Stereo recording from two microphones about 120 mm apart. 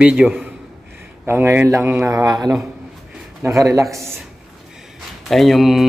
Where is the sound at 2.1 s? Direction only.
30° right (ahead or behind).